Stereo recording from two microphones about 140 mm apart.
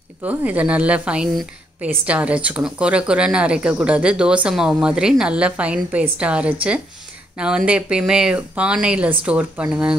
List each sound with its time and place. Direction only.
0.2 s a woman's voice: 10° right (ahead or behind)